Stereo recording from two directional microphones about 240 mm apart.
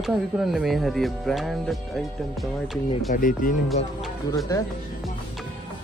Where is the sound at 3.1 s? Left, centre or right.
Left.